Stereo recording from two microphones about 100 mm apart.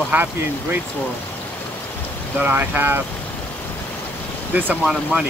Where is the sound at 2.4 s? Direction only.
20° right (ahead or behind).